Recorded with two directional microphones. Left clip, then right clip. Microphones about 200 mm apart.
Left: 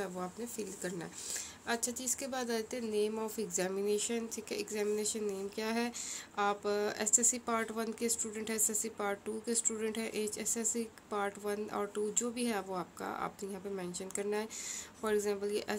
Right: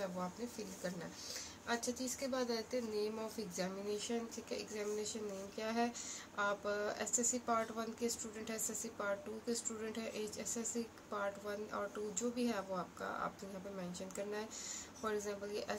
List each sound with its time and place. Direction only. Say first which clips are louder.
1.7 s speech: left 3 dB; 50° left (ahead or behind)